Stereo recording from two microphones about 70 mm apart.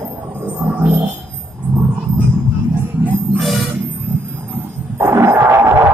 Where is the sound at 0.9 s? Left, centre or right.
Right.